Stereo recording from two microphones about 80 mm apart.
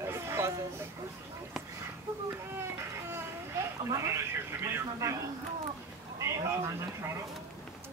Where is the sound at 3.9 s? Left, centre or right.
Right.